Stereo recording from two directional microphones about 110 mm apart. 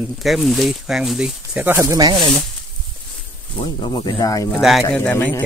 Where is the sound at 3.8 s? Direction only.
45° left (ahead or behind).